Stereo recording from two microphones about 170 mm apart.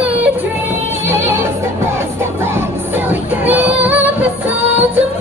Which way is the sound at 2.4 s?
10° right (ahead or behind).